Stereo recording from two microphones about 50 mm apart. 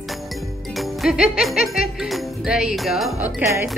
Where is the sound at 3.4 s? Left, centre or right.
Right.